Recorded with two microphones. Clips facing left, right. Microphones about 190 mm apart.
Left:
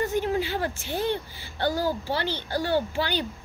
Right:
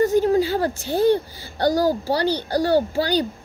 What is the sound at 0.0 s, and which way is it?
A woman's voice, 40° right (ahead or behind).